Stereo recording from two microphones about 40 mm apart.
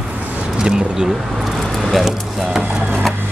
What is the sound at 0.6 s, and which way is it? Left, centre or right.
Speech, centre.